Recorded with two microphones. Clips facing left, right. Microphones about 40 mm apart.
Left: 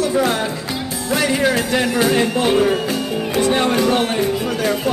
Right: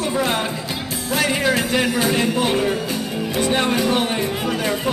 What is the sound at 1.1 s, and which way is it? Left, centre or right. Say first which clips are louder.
Music: left 2 dB; centre.